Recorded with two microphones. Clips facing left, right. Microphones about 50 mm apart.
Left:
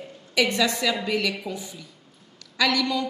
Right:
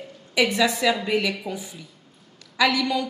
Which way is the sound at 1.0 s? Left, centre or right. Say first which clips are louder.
Right 2 dB; centre.